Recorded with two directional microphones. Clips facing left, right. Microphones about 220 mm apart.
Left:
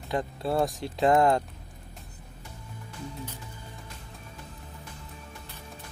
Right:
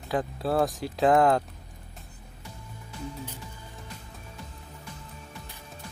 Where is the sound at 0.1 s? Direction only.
Centre (ahead or behind).